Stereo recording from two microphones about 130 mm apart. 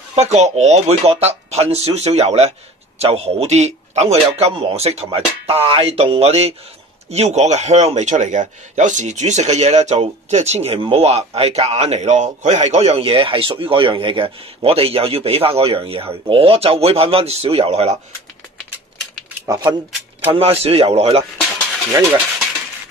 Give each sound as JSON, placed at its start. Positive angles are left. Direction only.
{"t": 0.1, "sound": "a man's voice", "side_deg": -55}
{"t": 19.5, "sound": "speech", "side_deg": -25}
{"t": 20.3, "sound": "a man's voice", "side_deg": -50}